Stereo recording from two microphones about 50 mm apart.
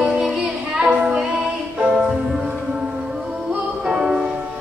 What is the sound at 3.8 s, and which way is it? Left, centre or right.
Music, centre.